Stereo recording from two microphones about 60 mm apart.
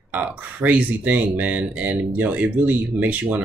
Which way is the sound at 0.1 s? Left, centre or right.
Right.